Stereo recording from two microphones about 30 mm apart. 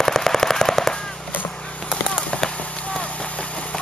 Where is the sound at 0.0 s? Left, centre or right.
Centre.